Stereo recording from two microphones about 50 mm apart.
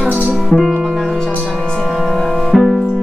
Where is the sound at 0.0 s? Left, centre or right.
Centre.